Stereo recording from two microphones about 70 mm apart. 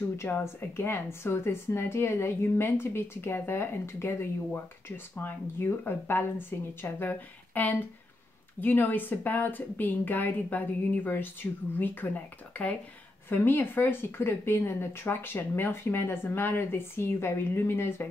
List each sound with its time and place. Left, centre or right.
0.2 s a woman's voice: left